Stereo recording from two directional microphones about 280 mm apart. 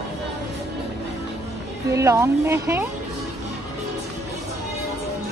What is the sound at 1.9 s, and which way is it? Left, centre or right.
Speech, centre.